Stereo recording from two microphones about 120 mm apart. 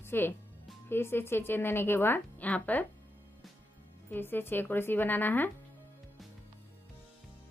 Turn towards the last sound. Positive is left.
turn(degrees=15)  # may be behind; listen again after turning